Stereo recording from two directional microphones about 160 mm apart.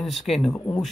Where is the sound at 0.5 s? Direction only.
20° left (ahead or behind).